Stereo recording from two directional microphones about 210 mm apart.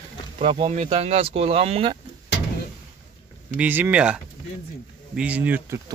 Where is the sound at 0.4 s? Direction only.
30° right (ahead or behind).